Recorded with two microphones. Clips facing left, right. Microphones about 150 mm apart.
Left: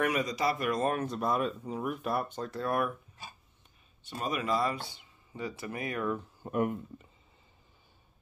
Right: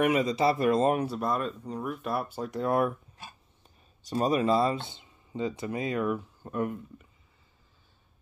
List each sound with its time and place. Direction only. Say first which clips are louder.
0.0 s speech: right 5 dB; 25° right (ahead or behind)
1.0 s speech: right 1 dB; 5° right (ahead or behind); by 2.9 s 20° right (ahead or behind)
4.0 s speech: right 8 dB; 35° right (ahead or behind); by 6.1 s 20° right (ahead or behind)
6.4 s speech: left 3 dB; 15° left (ahead or behind)